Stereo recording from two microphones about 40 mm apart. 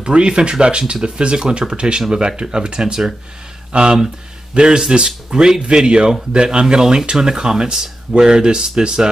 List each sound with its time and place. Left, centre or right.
0.0 s speech: right